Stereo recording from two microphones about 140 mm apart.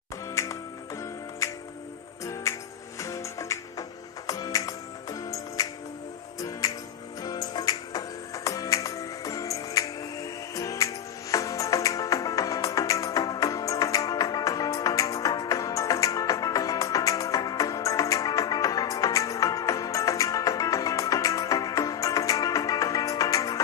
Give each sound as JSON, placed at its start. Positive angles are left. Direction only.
{"t": 0.3, "sound": "music", "side_deg": 20}
{"t": 2.4, "sound": "music", "side_deg": 20}
{"t": 7.2, "sound": "music", "side_deg": 30}